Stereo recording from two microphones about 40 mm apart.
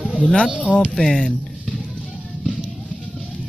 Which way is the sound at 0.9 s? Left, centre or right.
Centre.